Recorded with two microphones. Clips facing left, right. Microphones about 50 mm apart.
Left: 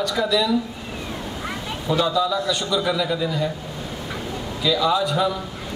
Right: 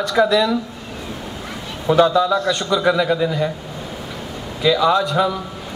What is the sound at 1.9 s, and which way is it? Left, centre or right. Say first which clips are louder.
A man's voice: right 6 dB; right.